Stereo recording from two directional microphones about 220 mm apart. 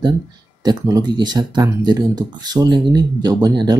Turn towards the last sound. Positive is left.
turn(degrees=-15)  # may be behind; listen again after turning